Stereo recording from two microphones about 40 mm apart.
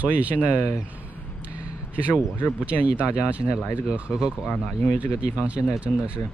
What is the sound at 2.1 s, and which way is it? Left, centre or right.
Speech, right.